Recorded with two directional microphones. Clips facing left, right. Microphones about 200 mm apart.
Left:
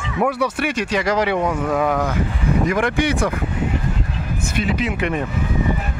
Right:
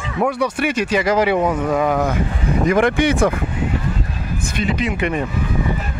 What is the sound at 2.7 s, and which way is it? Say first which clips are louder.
Speech: right 8 dB; 20° right (ahead or behind).